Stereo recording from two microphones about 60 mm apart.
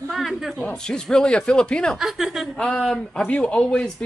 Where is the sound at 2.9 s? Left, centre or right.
Centre.